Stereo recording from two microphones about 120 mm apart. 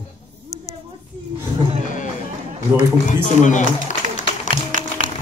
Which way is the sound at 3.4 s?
90° left.